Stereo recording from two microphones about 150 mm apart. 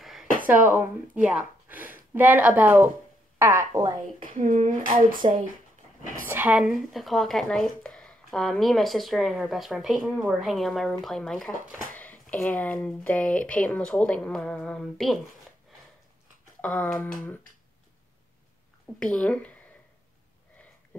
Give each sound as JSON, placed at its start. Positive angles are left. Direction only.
{"t": 0.0, "sound": "a sound", "side_deg": 0}
{"t": 0.4, "sound": "speech", "side_deg": -65}
{"t": 0.7, "sound": "speech", "side_deg": -10}
{"t": 4.2, "sound": "speech", "side_deg": -65}
{"t": 6.2, "sound": "speech", "side_deg": -10}
{"t": 16.6, "sound": "speech", "side_deg": 5}
{"t": 18.9, "sound": "speech", "side_deg": 5}